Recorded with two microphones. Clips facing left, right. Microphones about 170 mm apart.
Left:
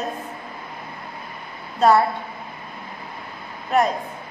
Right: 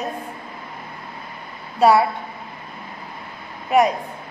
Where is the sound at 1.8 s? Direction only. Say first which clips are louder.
Right 1 dB; 10° right (ahead or behind).